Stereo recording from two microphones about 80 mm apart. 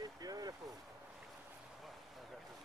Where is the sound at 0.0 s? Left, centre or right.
Right.